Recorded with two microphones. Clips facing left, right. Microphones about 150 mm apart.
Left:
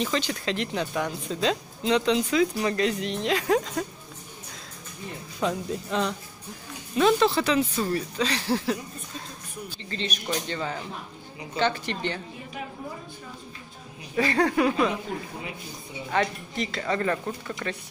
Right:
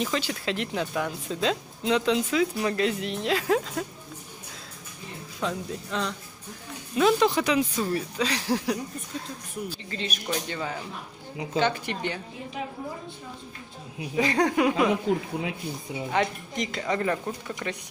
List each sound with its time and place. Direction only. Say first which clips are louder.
0.0 s speech: left 1 dB; 5° right (ahead or behind)
5.4 s speech: left 3 dB; 15° left (ahead or behind)
7.0 s speech: left 1 dB; 10° right (ahead or behind)
9.8 s speech: left 5 dB; 5° right (ahead or behind)
14.1 s speech: even; 15° right (ahead or behind)
16.1 s speech: left 1 dB; 15° right (ahead or behind)